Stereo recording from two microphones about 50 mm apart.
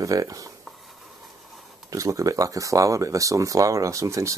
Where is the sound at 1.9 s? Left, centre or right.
Right.